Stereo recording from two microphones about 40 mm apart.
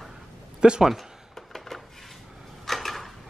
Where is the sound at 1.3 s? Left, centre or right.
Centre.